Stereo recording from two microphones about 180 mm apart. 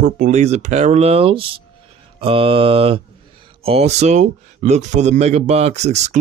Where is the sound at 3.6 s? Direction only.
35° right (ahead or behind).